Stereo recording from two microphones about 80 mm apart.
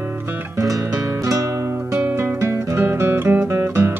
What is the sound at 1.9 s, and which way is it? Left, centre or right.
Music, right.